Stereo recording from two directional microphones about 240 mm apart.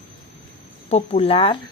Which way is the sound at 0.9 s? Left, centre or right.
Left.